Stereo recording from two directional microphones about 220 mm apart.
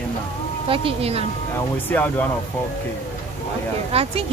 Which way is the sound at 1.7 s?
10° left (ahead or behind).